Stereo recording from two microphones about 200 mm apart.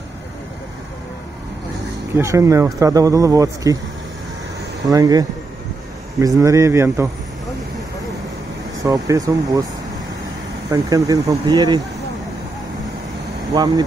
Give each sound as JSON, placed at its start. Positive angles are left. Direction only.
{"t": 2.1, "sound": "speech", "side_deg": -15}
{"t": 4.9, "sound": "speech", "side_deg": -20}
{"t": 8.8, "sound": "speech", "side_deg": -15}
{"t": 10.7, "sound": "speech", "side_deg": -15}